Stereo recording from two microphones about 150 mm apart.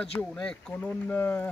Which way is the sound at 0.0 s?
5° left (ahead or behind).